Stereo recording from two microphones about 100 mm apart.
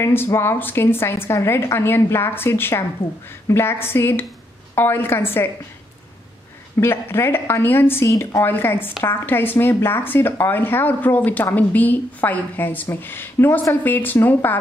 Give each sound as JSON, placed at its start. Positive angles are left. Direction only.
{"t": 0.0, "sound": "a woman's voice", "side_deg": 25}
{"t": 6.8, "sound": "a woman's voice", "side_deg": 25}